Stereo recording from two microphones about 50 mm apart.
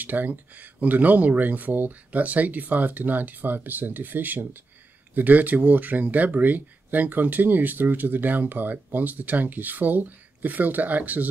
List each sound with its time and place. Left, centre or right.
0.0 s speech: right